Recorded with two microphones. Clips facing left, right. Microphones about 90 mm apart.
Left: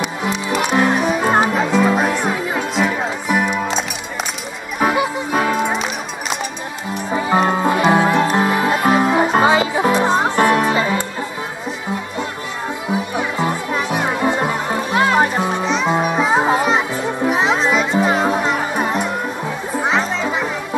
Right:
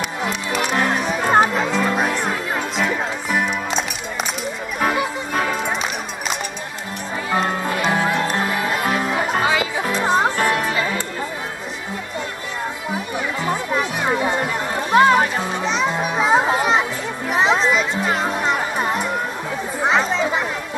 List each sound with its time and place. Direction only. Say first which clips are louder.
0.0 s music: left 3 dB; 5° left (ahead or behind)
7.2 s music: left 5 dB; 15° left (ahead or behind)
8.5 s music: left 6 dB; 20° left (ahead or behind)
10.0 s music: left 1 dB; centre (ahead or behind)
10.3 s music: left 5 dB; 15° left (ahead or behind)
13.9 s music: left 4 dB; 10° left (ahead or behind)
15.6 s music: left 2 dB; centre (ahead or behind)